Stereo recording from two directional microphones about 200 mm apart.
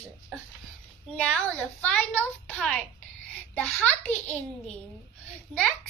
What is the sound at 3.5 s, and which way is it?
Speech, 5° left (ahead or behind).